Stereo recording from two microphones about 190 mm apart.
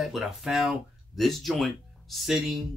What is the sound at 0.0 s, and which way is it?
Speech, centre (ahead or behind).